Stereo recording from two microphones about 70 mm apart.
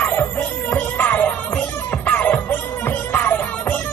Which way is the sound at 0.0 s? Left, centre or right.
Left.